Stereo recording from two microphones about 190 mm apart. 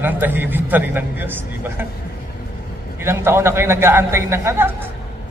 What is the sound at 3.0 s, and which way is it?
A woman's voice, 15° right (ahead or behind).